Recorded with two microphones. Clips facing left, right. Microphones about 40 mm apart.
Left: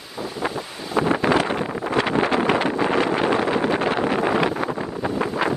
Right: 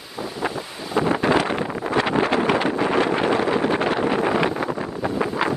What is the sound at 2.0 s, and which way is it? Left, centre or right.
Wind noise, right.